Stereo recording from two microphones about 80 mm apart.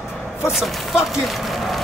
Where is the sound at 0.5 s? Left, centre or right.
Centre.